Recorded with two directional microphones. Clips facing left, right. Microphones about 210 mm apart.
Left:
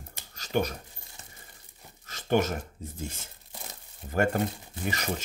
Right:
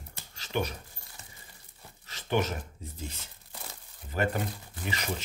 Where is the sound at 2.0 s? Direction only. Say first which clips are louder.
Left 4 dB; 45° left (ahead or behind).